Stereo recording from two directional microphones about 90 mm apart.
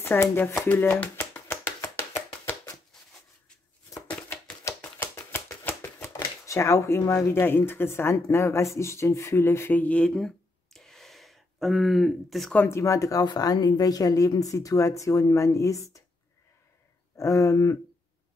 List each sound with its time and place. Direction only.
0.0 s speech: 25° left (ahead or behind)
0.7 s a sound: 20° left (ahead or behind)
4.3 s typewriter: 25° left (ahead or behind)
6.4 s a woman's voice: 35° left (ahead or behind); by 12.5 s centre (ahead or behind)
12.6 s speech: 35° left (ahead or behind)
17.2 s speech: 35° left (ahead or behind)